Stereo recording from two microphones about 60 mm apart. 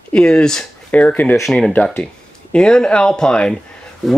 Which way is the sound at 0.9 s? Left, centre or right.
Left.